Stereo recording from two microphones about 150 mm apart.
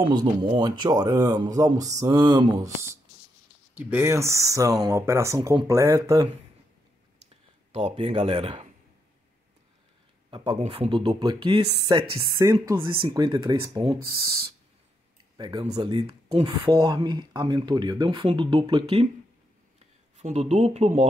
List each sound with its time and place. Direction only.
0.1 s speech: 30° right (ahead or behind)
7.7 s speech: 40° right (ahead or behind)
10.3 s speech: 35° right (ahead or behind)
13.9 s speech: 90° right
15.3 s speech: 30° right (ahead or behind)
19.8 s speech: 45° right (ahead or behind)